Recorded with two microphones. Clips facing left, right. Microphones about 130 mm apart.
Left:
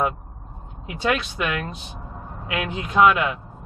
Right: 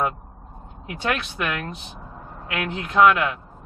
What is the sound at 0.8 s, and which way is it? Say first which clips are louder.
Speech: left 3 dB; 10° left (ahead or behind).